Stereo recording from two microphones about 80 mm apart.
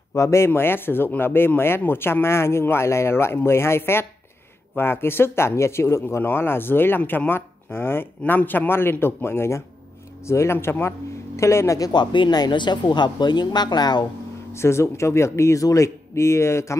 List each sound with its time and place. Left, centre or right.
0.1 s speech: left
11.9 s speech: left
14.5 s speech: left